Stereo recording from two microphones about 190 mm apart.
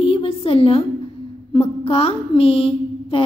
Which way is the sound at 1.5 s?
30° left (ahead or behind).